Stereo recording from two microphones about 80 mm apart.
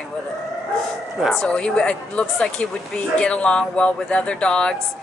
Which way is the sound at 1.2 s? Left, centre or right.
Centre.